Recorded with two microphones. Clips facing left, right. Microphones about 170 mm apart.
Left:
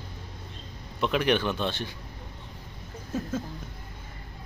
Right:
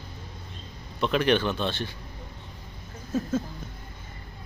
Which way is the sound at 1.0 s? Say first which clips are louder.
Right 2 dB; 10° left (ahead or behind).